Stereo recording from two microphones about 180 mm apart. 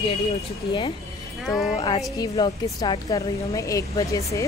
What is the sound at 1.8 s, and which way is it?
A woman's voice, 25° left (ahead or behind).